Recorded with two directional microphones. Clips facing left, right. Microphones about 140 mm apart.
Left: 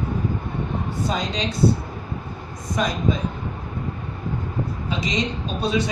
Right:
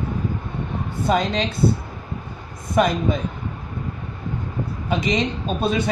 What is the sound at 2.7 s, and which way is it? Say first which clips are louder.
Speech: right 4 dB; 55° right (ahead or behind).